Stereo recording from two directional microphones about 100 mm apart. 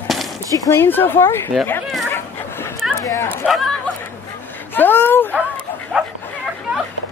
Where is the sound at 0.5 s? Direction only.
35° left (ahead or behind).